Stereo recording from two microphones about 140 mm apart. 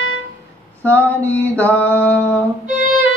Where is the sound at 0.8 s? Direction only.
10° left (ahead or behind).